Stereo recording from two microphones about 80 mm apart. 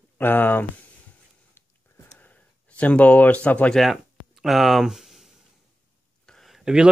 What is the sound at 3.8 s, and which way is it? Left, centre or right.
Speech, centre.